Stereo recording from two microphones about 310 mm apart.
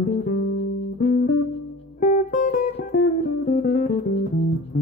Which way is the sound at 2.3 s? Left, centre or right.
Left.